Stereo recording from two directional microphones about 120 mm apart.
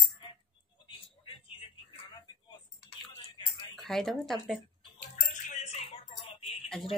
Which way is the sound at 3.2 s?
40° left (ahead or behind).